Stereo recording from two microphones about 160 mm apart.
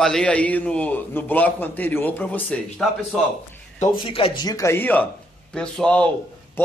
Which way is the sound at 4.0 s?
35° left (ahead or behind).